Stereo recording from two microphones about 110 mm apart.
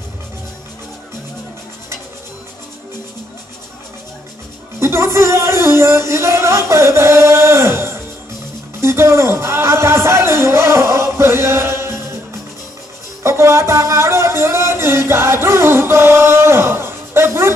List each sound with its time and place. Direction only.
4.7 s music: 25° right (ahead or behind)
8.8 s speech: 25° right (ahead or behind)
13.2 s speech: 25° right (ahead or behind)